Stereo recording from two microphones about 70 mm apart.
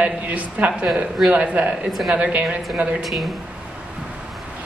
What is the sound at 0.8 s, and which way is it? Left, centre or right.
Speech, centre.